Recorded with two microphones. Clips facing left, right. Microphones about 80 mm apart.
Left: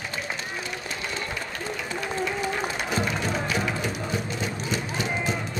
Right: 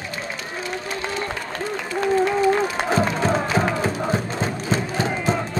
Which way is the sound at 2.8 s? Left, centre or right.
Right.